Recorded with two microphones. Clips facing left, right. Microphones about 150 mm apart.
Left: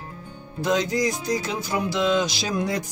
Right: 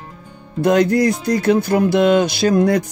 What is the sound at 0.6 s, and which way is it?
Speech, 60° right (ahead or behind).